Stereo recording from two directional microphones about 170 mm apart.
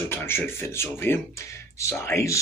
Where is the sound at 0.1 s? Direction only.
15° left (ahead or behind).